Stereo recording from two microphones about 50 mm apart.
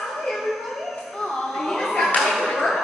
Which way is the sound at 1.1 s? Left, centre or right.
Centre.